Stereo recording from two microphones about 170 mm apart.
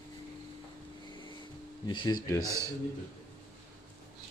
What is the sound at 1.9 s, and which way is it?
Speech, 25° left (ahead or behind).